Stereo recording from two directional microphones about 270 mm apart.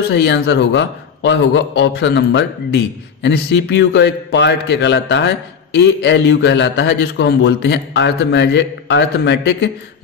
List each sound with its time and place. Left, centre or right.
0.1 s a man's voice: left